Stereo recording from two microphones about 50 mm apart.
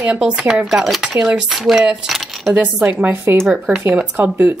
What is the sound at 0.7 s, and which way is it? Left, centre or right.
A woman's voice, centre.